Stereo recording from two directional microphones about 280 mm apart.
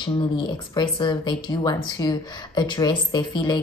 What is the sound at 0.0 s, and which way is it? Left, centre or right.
A woman's voice, centre.